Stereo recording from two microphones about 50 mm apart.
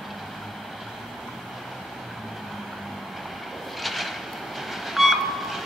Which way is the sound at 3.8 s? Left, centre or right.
Centre.